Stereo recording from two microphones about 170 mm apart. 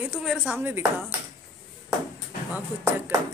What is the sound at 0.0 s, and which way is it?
Speech, 5° right (ahead or behind).